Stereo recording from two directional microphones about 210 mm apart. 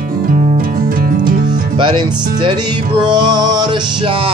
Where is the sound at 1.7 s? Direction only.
20° right (ahead or behind).